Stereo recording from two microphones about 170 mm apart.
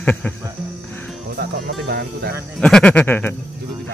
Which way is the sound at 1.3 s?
75° right (ahead or behind).